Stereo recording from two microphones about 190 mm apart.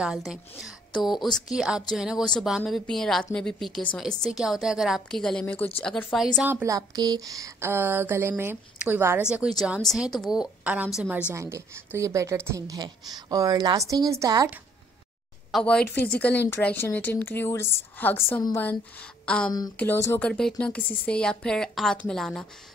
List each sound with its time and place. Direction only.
0.0 s a woman's voice: 5° right (ahead or behind)
6.1 s a woman's voice: centre (ahead or behind)
6.5 s a woman's voice: 15° right (ahead or behind)
15.5 s a woman's voice: 5° left (ahead or behind)